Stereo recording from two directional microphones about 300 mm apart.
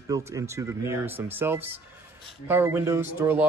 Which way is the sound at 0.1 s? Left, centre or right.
Centre.